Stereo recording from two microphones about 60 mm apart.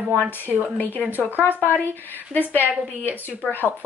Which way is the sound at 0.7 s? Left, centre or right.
Left.